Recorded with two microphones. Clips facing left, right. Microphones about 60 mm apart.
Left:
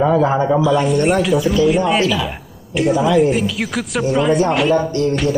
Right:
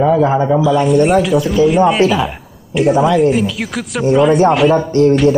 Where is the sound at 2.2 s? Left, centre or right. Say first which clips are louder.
Right 3 dB; centre.